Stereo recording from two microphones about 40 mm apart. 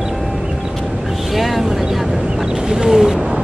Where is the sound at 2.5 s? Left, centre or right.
Centre.